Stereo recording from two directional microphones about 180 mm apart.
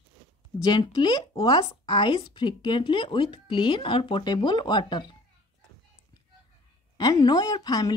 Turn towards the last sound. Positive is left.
turn(degrees=20)  # may be behind; listen again after turning